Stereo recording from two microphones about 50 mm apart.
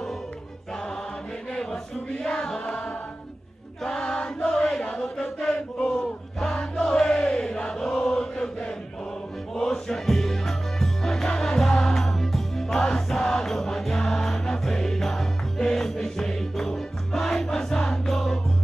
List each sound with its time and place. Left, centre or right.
1.5 s a sound: centre
3.8 s chant: centre
5.8 s battle cry: left
6.4 s chant: centre
9.6 s music: centre